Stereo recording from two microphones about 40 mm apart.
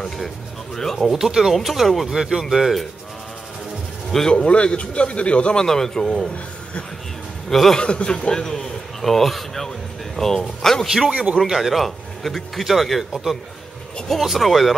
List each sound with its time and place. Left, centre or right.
0.9 s speech: centre
2.0 s speech: centre
2.5 s speech: centre
4.3 s a man's voice: left
5.6 s a man's voice: centre
6.2 s speech: left
7.4 s speech: centre
7.7 s a man's voice: left; by 10.9 s centre
11.1 s speech: right
11.4 s speech: centre
14.1 s speech: centre